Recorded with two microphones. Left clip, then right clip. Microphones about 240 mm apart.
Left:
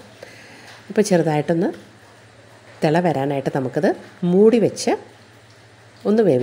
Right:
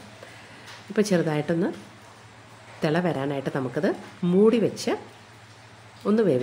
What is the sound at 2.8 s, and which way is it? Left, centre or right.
Speech, left.